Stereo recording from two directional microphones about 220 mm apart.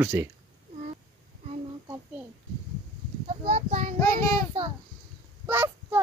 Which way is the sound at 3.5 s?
30° right (ahead or behind).